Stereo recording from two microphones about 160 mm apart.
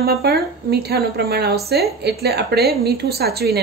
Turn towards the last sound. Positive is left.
turn(degrees=-80)